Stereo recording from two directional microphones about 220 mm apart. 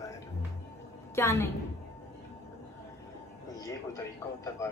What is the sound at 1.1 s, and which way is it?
Speech, 10° left (ahead or behind).